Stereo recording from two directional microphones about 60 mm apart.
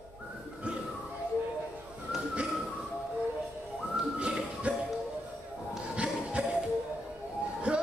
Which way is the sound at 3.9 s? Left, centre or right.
Centre.